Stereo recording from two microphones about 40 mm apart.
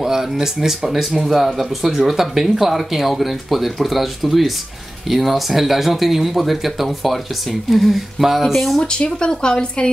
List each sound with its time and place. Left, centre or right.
0.0 s speech: centre
8.7 s speech: left